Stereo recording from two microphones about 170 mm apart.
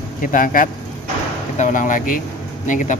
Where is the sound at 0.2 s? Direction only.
50° left (ahead or behind).